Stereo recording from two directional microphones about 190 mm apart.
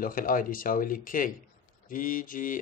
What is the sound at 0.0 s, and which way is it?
Speech, 45° left (ahead or behind).